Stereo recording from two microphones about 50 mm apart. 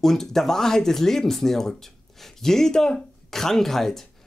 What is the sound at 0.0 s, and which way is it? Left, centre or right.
Speech, centre.